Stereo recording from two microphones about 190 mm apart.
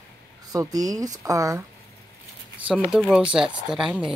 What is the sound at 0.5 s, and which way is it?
Speech, 20° right (ahead or behind).